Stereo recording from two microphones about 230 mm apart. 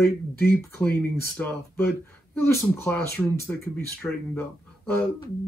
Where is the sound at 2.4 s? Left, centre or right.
Centre.